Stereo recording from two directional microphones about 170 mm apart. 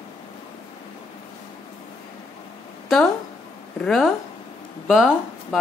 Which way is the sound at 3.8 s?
Centre (ahead or behind).